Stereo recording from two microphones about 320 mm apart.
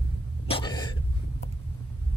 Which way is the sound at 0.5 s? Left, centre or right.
Centre.